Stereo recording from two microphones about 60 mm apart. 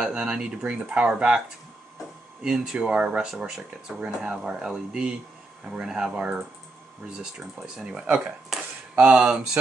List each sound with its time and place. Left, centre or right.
0.0 s speech: centre
2.4 s speech: centre
7.3 s speech: centre